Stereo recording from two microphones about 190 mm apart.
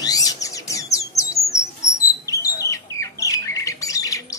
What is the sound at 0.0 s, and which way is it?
Bird, 20° left (ahead or behind).